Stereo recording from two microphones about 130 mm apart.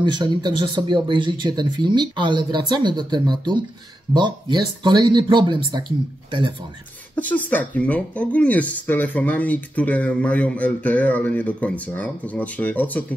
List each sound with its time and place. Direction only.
0.0 s speech: 35° right (ahead or behind)
7.2 s speech: 10° left (ahead or behind)